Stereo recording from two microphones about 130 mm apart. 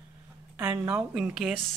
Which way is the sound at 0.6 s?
10° right (ahead or behind).